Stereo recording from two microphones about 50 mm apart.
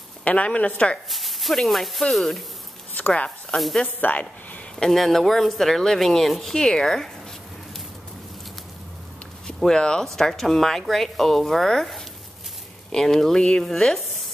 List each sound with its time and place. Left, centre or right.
0.2 s a woman's voice: left
1.1 s a woman's voice: centre
4.0 s a woman's voice: left
4.7 s a woman's voice: centre
9.6 s speech: centre